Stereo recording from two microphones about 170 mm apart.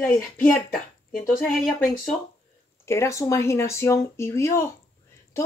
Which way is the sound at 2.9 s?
15° left (ahead or behind).